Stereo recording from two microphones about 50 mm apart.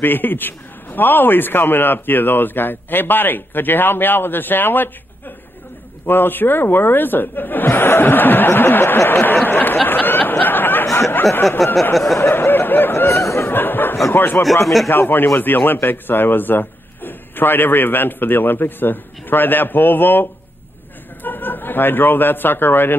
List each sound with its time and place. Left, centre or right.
0.0 s a man's voice: left
6.0 s a man's voice: left
7.6 s a man's voice: left
9.5 s a sound: left
10.9 s a sound: left
11.6 s speech: centre
12.2 s snicker: left
13.1 s a sound: left
13.5 s snicker: left
14.1 s a man's voice: left
14.4 s speech: centre
14.9 s a man's voice: left